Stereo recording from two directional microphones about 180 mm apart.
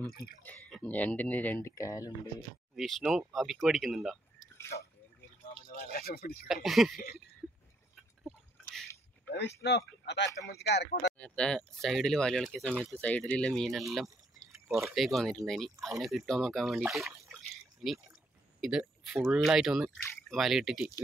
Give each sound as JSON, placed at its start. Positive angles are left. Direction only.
{"t": 0.4, "sound": "speech", "side_deg": 5}
{"t": 2.7, "sound": "speech", "side_deg": 0}
{"t": 5.9, "sound": "speech", "side_deg": 55}
{"t": 6.4, "sound": "speech", "side_deg": 0}
{"t": 9.3, "sound": "speech", "side_deg": 70}
{"t": 11.1, "sound": "speech", "side_deg": 5}
{"t": 13.9, "sound": "drip", "side_deg": 0}
{"t": 15.0, "sound": "speech", "side_deg": 0}